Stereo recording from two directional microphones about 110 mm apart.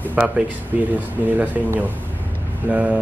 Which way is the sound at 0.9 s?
15° right (ahead or behind).